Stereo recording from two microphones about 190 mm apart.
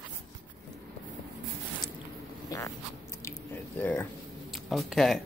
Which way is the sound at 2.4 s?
15° left (ahead or behind).